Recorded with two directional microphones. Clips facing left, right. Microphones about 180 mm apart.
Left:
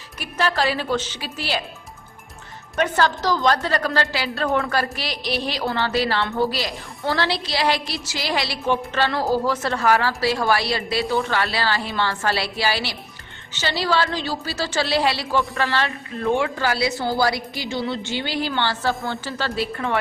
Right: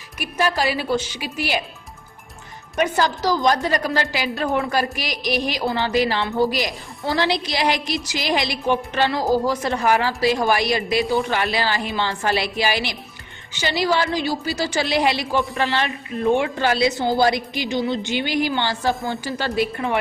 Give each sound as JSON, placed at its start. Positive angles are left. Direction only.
{"t": 0.2, "sound": "a woman's voice", "side_deg": -15}
{"t": 2.7, "sound": "a woman's voice", "side_deg": -10}